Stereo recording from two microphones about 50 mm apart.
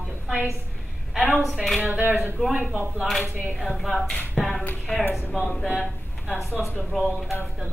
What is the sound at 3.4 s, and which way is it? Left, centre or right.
A woman's voice, centre.